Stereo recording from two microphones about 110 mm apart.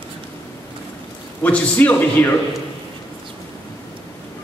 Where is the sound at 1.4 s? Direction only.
15° left (ahead or behind).